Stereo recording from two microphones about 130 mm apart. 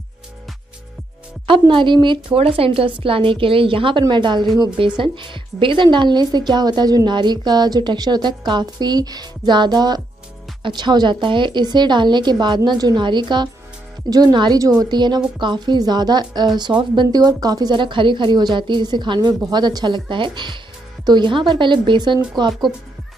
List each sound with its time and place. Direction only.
1.5 s a woman's voice: 40° right (ahead or behind)